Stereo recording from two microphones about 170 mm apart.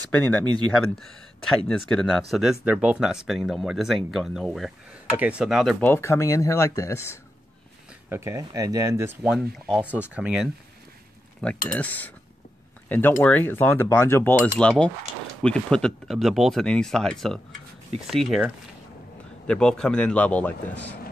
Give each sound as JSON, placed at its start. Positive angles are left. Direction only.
{"t": 0.2, "sound": "speech", "side_deg": 10}
{"t": 5.8, "sound": "speech", "side_deg": 15}
{"t": 8.1, "sound": "speech", "side_deg": -15}
{"t": 9.2, "sound": "speech", "side_deg": -5}
{"t": 11.7, "sound": "speech", "side_deg": 10}
{"t": 19.4, "sound": "speech", "side_deg": 5}